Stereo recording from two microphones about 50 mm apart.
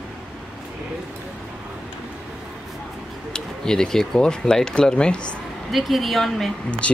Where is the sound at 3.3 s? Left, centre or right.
Centre.